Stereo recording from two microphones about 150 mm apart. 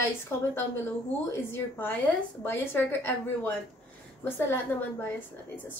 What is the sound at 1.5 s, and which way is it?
A woman's voice, 15° left (ahead or behind).